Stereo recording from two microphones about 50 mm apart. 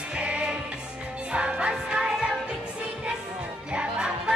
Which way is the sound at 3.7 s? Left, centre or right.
Centre.